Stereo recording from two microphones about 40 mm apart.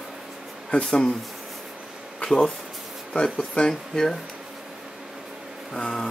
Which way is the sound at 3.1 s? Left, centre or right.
Left.